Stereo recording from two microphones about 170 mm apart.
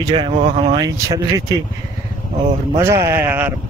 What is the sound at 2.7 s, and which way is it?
Speech, 15° right (ahead or behind).